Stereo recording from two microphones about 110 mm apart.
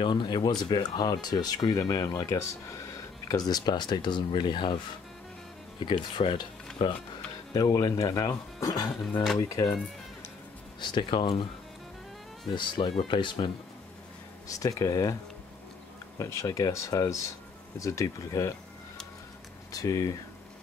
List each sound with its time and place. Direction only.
0.0 s speech: 45° left (ahead or behind)
5.8 s speech: 45° left (ahead or behind)
7.5 s speech: 35° left (ahead or behind)
10.8 s speech: 45° left (ahead or behind)
12.4 s speech: 45° left (ahead or behind)
14.5 s speech: 30° left (ahead or behind)
16.2 s speech: 30° left (ahead or behind)
19.7 s speech: 30° left (ahead or behind)